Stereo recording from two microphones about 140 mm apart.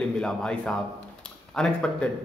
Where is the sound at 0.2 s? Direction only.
5° left (ahead or behind).